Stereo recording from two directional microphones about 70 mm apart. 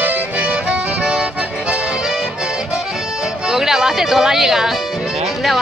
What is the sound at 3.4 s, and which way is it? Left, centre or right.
Speech, centre.